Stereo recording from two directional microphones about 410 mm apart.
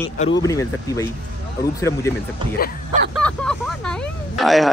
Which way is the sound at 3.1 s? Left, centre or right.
Centre.